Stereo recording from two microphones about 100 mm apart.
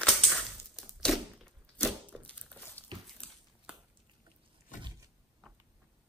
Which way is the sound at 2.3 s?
15° left (ahead or behind).